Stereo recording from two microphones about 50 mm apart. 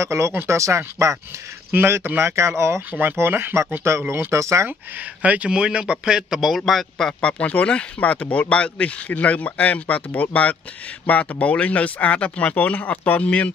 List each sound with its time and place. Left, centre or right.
0.0 s speech: right
1.7 s speech: right
3.0 s speech: right
3.9 s speech: right
4.3 s speech: right
5.2 s speech: right
6.4 s a man's voice: centre
7.2 s speech: left